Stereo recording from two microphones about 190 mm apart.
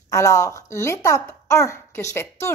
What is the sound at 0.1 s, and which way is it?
A woman's voice, 15° left (ahead or behind).